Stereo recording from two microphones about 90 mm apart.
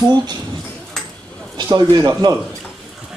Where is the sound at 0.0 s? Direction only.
50° right (ahead or behind).